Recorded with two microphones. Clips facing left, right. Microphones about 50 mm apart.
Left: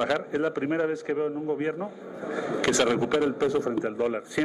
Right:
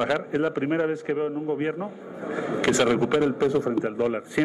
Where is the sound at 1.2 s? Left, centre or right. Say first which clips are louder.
Right 1 dB; right.